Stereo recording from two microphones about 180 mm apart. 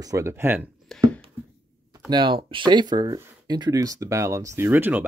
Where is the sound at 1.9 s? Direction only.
20° right (ahead or behind).